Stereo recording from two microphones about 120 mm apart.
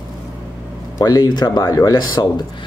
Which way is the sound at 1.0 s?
35° left (ahead or behind).